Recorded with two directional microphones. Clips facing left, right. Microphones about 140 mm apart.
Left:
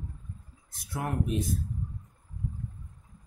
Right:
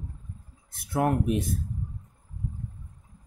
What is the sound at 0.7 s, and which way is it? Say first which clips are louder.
Speech: right 8 dB; 60° right (ahead or behind).